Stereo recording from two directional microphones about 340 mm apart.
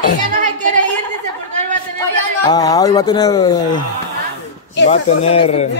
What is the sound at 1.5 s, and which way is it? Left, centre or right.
Chatter, right.